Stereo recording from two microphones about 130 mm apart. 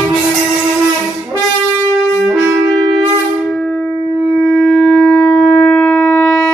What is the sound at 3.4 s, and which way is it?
Shofar, centre (ahead or behind).